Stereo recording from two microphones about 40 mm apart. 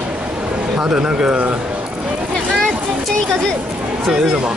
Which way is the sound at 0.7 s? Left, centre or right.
Right.